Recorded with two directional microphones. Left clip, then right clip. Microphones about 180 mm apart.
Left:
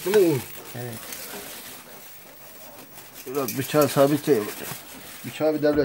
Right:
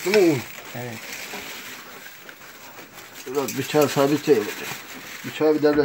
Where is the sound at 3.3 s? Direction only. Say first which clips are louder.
Right 1 dB; 25° left (ahead or behind).